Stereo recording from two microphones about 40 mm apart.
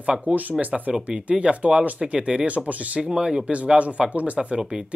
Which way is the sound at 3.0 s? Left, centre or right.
Centre.